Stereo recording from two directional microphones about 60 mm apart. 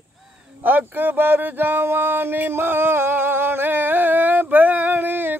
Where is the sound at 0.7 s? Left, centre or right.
Right.